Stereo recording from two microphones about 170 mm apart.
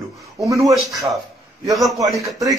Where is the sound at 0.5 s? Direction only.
20° right (ahead or behind).